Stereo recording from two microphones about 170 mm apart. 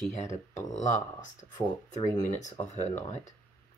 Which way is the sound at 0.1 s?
45° left (ahead or behind).